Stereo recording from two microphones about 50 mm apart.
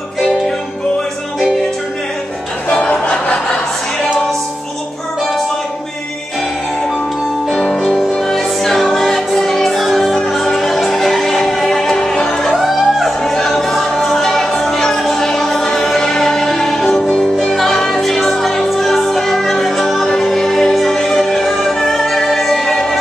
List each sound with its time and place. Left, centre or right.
2.7 s music: left
7.5 s music: centre
12.5 s music: centre
13.2 s music: centre